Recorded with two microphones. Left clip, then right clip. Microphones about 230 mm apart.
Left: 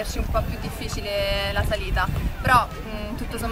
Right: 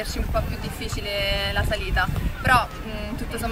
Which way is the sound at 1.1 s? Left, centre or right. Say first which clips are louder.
Left 1 dB; centre.